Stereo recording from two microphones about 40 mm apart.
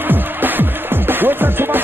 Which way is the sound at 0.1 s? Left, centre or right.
Right.